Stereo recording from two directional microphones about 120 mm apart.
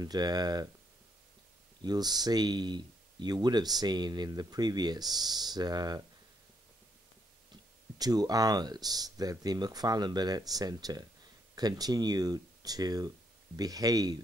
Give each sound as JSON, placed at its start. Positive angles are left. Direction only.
{"t": 0.0, "sound": "speech", "side_deg": -35}
{"t": 1.8, "sound": "speech", "side_deg": -35}
{"t": 8.0, "sound": "speech", "side_deg": -35}